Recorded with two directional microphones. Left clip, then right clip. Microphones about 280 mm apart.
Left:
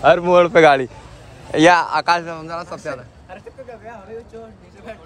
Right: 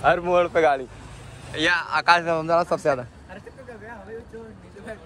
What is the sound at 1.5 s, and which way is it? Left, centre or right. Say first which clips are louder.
Speech: left 9 dB; centre.